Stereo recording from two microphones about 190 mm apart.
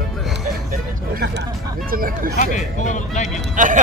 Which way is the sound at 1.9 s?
50° right (ahead or behind).